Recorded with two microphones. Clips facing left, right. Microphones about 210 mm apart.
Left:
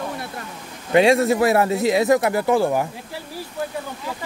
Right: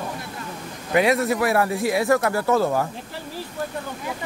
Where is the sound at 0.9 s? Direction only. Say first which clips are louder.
Left 4 dB; 25° left (ahead or behind).